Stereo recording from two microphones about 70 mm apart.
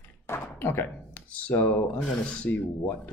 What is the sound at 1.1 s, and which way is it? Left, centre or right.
Speech, centre.